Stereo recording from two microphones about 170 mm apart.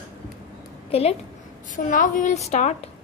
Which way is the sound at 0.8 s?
35° left (ahead or behind).